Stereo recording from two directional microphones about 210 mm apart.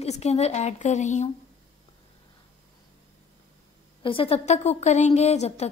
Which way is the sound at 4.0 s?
25° left (ahead or behind).